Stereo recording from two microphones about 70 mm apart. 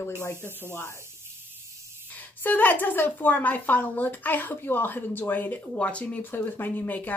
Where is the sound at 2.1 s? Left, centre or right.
Left.